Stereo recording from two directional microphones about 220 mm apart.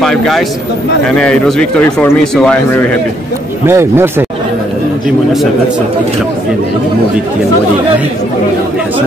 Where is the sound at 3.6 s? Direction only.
10° right (ahead or behind).